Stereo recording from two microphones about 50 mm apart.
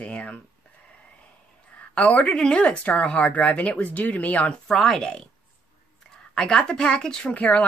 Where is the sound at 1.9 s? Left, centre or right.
Left.